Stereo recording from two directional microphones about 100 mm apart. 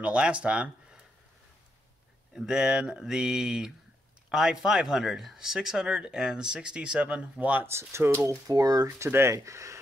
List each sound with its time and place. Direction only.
0.0 s speech: 10° right (ahead or behind)
2.3 s speech: 5° right (ahead or behind)
7.6 s speech: 25° right (ahead or behind)
8.5 s speech: 40° right (ahead or behind)